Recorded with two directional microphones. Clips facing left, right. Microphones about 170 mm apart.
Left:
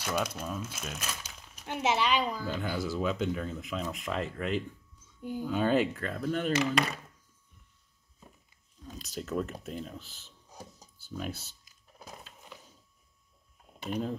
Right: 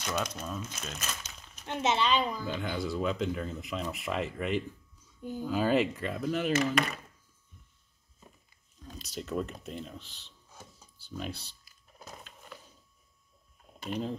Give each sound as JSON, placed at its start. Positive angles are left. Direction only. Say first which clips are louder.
{"t": 0.0, "sound": "speech", "louder": "left 2 dB", "side_deg": 10}
{"t": 5.2, "sound": "speech", "louder": "left 1 dB", "side_deg": 15}
{"t": 5.5, "sound": "speech", "louder": "even", "side_deg": 0}
{"t": 8.8, "sound": "speech", "louder": "left 1 dB", "side_deg": 0}
{"t": 10.5, "sound": "a sound", "louder": "left 4 dB", "side_deg": 40}
{"t": 11.0, "sound": "speech", "louder": "left 1 dB", "side_deg": 5}
{"t": 11.6, "sound": "a sound", "louder": "even", "side_deg": 10}
{"t": 13.8, "sound": "speech", "louder": "left 1 dB", "side_deg": 5}